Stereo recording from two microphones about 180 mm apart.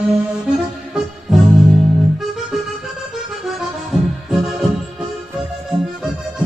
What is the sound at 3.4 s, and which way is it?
Music, centre (ahead or behind).